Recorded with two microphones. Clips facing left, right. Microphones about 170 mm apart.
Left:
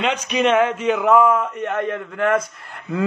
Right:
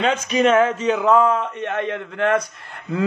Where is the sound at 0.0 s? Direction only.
45° right (ahead or behind).